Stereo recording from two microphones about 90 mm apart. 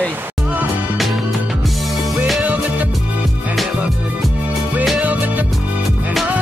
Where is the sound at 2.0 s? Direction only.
Centre (ahead or behind).